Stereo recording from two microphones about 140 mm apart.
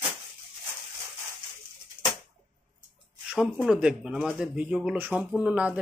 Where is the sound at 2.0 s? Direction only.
70° right (ahead or behind).